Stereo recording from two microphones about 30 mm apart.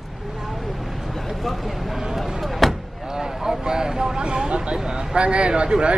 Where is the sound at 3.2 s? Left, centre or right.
Right.